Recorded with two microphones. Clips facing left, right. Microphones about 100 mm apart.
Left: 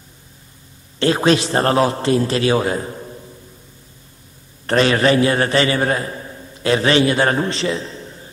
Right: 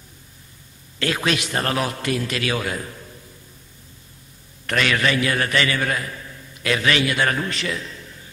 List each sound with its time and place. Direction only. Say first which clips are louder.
0.9 s a man's voice: left 8 dB; 30° left (ahead or behind)
4.6 s a man's voice: left 7 dB; 30° left (ahead or behind)